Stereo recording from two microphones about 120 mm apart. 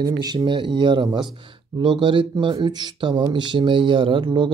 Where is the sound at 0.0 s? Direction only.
35° right (ahead or behind).